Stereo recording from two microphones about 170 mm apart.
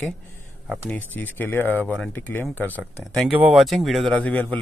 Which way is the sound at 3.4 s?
Centre (ahead or behind).